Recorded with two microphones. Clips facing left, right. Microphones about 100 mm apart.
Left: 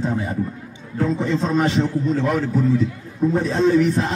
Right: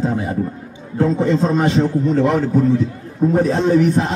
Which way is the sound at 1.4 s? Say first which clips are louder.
Right 3 dB; 25° right (ahead or behind).